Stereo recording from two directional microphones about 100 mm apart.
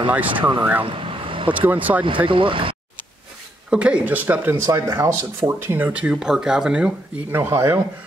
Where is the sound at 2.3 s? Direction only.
60° right (ahead or behind).